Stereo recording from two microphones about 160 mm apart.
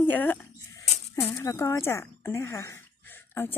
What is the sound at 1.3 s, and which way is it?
Speech, 20° left (ahead or behind).